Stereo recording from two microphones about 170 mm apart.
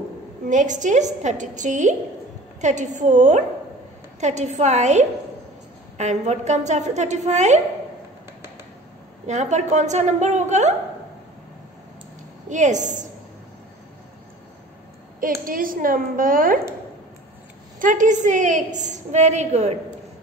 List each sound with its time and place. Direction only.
0.5 s a woman's voice: 45° right (ahead or behind)
9.2 s a woman's voice: 45° right (ahead or behind)
12.4 s a woman's voice: 45° right (ahead or behind)
15.1 s a woman's voice: 55° right (ahead or behind)
17.7 s a woman's voice: 50° right (ahead or behind)